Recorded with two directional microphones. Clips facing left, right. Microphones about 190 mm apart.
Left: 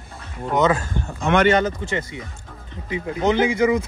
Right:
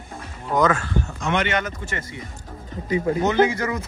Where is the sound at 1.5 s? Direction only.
35° left (ahead or behind).